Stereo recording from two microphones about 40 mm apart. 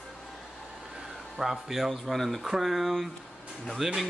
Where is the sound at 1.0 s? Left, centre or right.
Centre.